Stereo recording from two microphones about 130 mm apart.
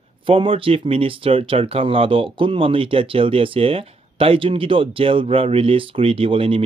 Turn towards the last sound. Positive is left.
turn(degrees=-45)  # may be behind; listen again after turning